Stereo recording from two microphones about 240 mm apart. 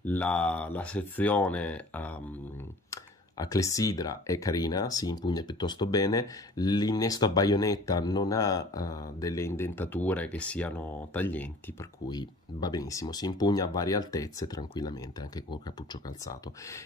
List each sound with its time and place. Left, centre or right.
0.0 s speech: centre